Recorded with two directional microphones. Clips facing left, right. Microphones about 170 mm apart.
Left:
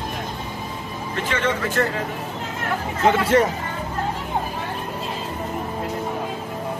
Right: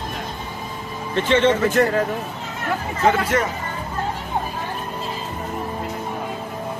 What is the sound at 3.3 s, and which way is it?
Speech, 30° left (ahead or behind).